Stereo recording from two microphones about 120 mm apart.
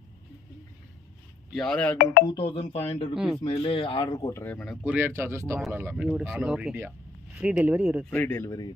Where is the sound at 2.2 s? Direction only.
50° left (ahead or behind).